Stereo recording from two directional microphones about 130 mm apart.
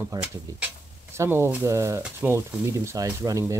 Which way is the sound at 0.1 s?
25° right (ahead or behind).